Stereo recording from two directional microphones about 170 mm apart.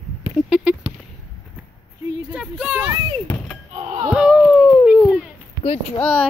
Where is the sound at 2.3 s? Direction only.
5° right (ahead or behind).